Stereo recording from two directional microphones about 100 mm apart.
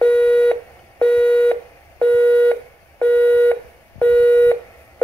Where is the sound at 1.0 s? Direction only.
10° left (ahead or behind).